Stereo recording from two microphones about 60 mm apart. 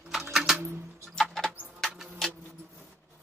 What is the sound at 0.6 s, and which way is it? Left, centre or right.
Music, right.